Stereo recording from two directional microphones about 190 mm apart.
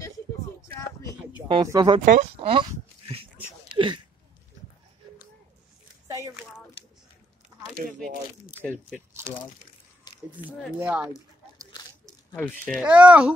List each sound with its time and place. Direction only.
1.5 s speech: 20° right (ahead or behind)
2.0 s speech: 30° right (ahead or behind)
3.7 s a sound: 25° right (ahead or behind)
6.0 s a sound: 15° right (ahead or behind)
8.5 s speech: 10° left (ahead or behind)
10.1 s a sound: 20° left (ahead or behind)
10.6 s speech: 5° right (ahead or behind)
12.4 s speech: 5° left (ahead or behind)
12.8 s speech: 5° right (ahead or behind)